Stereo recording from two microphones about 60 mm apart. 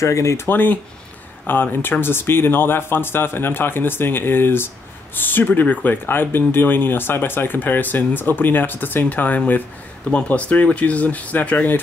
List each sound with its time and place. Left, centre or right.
0.0 s speech: left
0.5 s speech: left